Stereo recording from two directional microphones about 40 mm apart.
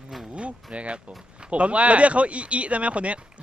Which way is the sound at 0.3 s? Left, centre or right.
Right.